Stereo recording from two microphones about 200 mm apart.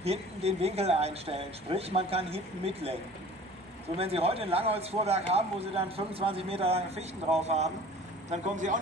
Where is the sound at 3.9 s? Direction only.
30° right (ahead or behind).